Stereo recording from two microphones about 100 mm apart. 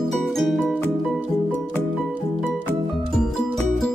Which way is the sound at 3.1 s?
5° left (ahead or behind).